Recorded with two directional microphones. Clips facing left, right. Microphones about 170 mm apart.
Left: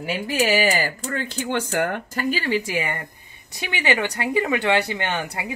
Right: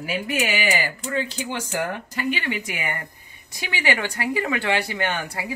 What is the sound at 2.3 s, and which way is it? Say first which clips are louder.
A woman's voice: left 5 dB; 35° left (ahead or behind).